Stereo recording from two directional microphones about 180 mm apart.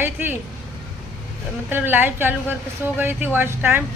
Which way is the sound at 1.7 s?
10° right (ahead or behind).